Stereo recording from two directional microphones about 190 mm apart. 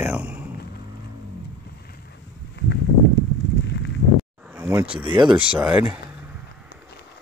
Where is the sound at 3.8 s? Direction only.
70° left (ahead or behind).